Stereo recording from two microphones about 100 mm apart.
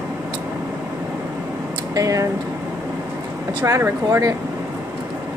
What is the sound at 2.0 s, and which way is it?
Speech, 35° right (ahead or behind).